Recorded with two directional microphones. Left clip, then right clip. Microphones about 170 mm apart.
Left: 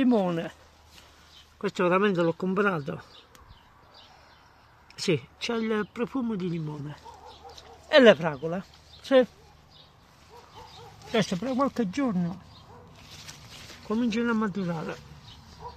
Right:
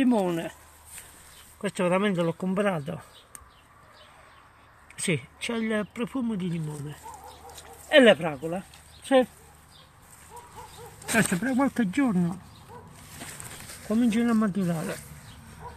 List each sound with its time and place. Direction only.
0.0 s speech: 35° left (ahead or behind)
1.6 s speech: 25° left (ahead or behind)
5.1 s speech: 30° left (ahead or behind)
11.4 s speech: 20° left (ahead or behind)
13.9 s speech: 15° left (ahead or behind)